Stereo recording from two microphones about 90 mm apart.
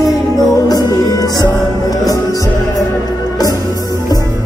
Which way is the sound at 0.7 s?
45° left (ahead or behind).